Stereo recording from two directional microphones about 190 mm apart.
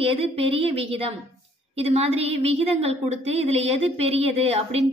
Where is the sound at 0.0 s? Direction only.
30° right (ahead or behind).